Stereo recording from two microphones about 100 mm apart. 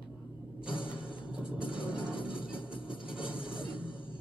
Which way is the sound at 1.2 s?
10° right (ahead or behind).